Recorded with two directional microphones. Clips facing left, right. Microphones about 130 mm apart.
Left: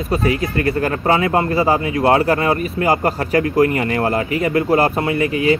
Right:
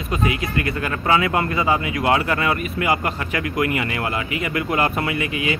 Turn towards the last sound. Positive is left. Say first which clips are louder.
# left 7 dB
turn(degrees=40)  # may be behind; listen again after turning